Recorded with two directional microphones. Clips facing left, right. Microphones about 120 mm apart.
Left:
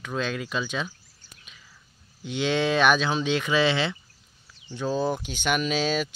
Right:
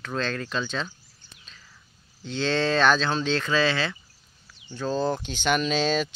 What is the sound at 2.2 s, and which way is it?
Speech, 15° left (ahead or behind).